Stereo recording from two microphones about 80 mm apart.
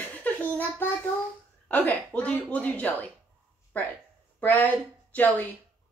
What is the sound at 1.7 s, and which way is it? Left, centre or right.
A woman's voice, centre.